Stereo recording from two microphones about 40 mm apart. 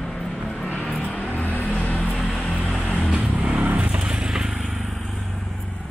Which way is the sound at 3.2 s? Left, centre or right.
Right.